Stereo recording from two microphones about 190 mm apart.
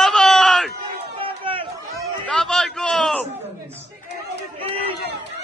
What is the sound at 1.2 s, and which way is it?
Run, 30° right (ahead or behind).